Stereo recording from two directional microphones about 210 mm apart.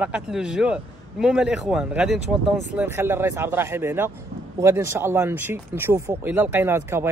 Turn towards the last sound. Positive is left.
turn(degrees=-10)  # may be behind; listen again after turning